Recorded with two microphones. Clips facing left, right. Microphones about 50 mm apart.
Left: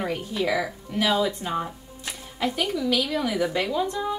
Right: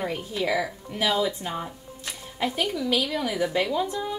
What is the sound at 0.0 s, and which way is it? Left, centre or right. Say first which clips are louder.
A woman's voice: left 1 dB; centre.